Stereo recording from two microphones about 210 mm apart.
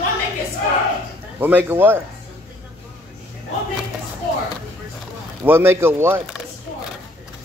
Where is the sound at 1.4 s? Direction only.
10° right (ahead or behind).